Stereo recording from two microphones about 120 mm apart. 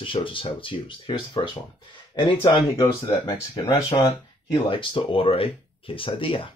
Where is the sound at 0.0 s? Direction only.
45° left (ahead or behind).